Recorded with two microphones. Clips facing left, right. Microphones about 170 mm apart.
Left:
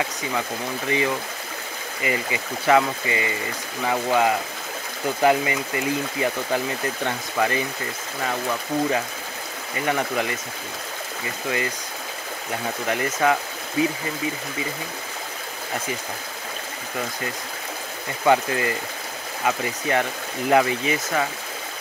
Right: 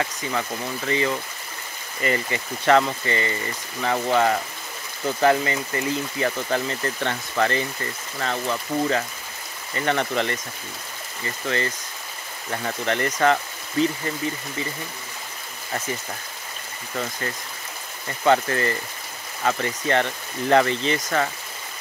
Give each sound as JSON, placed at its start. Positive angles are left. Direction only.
{"t": 0.8, "sound": "speech", "side_deg": 15}
{"t": 9.8, "sound": "speech", "side_deg": 10}
{"t": 12.8, "sound": "speech", "side_deg": 10}
{"t": 18.2, "sound": "speech", "side_deg": 10}